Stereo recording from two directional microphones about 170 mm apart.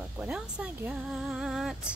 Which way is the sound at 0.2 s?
5° right (ahead or behind).